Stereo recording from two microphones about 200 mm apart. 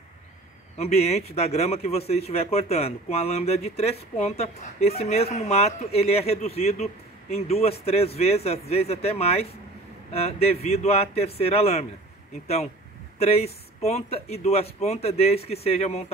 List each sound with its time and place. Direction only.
0.7 s a man's voice: 30° left (ahead or behind)
13.2 s a man's voice: 30° left (ahead or behind)